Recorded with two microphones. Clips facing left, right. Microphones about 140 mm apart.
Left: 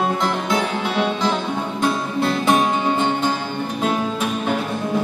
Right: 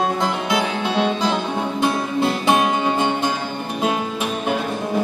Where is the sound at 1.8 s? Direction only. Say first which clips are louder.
Even; 15° right (ahead or behind).